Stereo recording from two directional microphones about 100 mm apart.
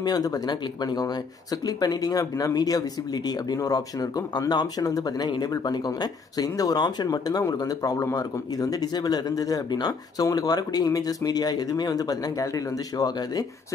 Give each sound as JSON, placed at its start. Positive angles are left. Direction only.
{"t": 0.0, "sound": "speech", "side_deg": 40}